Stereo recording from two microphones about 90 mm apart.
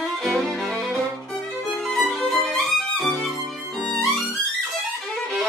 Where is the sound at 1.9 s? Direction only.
5° left (ahead or behind).